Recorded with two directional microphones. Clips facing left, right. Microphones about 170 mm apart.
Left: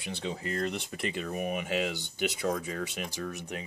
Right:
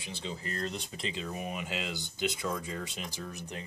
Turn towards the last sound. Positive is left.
turn(degrees=70)  # may be behind; listen again after turning